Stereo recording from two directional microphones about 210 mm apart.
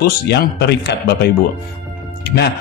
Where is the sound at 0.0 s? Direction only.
50° left (ahead or behind).